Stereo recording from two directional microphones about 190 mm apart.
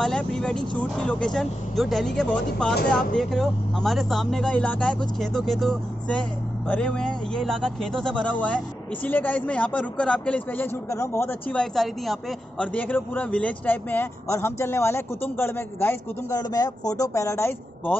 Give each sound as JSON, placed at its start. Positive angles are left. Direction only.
{"t": 0.0, "sound": "speech", "side_deg": 5}